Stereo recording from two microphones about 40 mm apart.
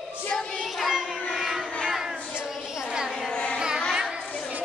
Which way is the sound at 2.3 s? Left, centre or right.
Centre.